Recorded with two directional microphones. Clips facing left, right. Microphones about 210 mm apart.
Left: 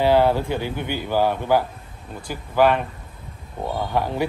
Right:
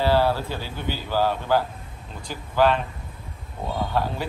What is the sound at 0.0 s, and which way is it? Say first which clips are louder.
Speech: left 4 dB; 15° left (ahead or behind).